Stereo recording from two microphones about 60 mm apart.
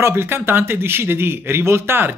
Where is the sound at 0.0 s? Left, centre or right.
Right.